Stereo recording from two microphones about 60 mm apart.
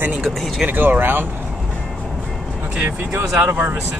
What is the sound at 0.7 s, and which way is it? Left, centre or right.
Speech, right.